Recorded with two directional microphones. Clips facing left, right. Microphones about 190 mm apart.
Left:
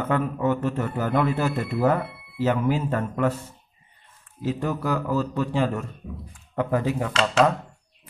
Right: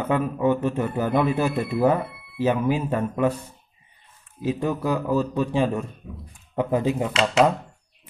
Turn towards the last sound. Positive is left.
turn(degrees=-15)  # may be behind; listen again after turning